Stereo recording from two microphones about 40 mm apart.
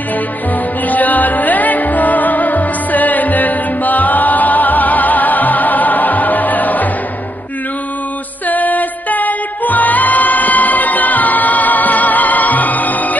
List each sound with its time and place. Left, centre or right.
0.8 s music: left
8.5 s music: left